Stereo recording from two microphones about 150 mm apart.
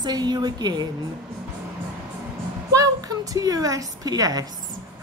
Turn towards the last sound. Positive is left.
turn(degrees=-25)  # may be behind; listen again after turning